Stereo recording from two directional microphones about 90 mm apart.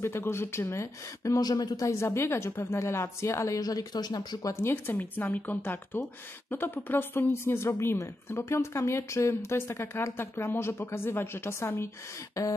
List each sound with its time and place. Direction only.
0.0 s a woman's voice: 30° left (ahead or behind); by 1.9 s 45° left (ahead or behind)
1.9 s a woman's voice: 30° left (ahead or behind); by 4.6 s 45° left (ahead or behind)
4.6 s a woman's voice: 25° left (ahead or behind)
12.4 s a woman's voice: 40° left (ahead or behind)